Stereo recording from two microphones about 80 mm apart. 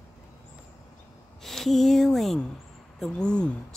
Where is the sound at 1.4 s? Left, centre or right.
Centre.